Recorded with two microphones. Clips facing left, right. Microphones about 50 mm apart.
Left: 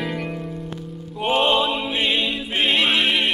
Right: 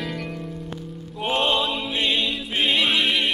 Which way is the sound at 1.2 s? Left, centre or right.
Centre.